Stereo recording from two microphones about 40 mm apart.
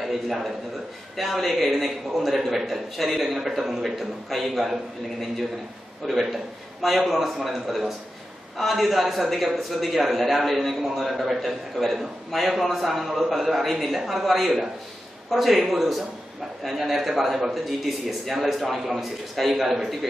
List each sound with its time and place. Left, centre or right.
0.0 s a man's voice: centre
6.0 s a man's voice: centre